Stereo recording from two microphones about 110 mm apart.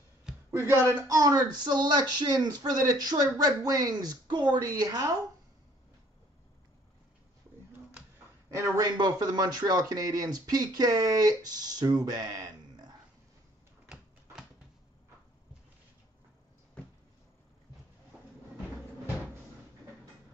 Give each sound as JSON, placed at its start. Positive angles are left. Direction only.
{"t": 0.5, "sound": "speech", "side_deg": -20}
{"t": 8.5, "sound": "a man's voice", "side_deg": -30}
{"t": 8.9, "sound": "speech", "side_deg": -40}